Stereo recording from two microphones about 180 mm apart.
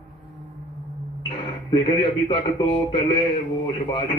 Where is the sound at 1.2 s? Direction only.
30° left (ahead or behind).